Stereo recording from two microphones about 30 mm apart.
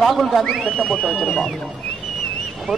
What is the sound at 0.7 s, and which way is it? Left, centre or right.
Speech, centre.